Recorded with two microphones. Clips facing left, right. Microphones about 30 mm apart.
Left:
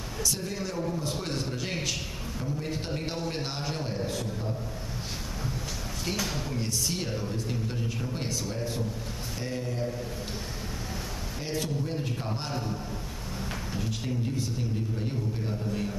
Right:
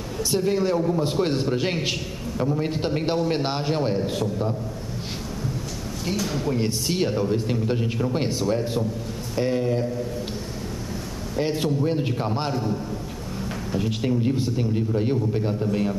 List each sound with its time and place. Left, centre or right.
0.2 s a man's voice: right
6.1 s speech: centre
6.5 s a man's voice: right
11.3 s a man's voice: right
13.7 s a man's voice: right